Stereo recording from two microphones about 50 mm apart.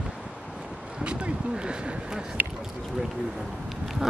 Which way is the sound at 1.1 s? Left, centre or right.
Right.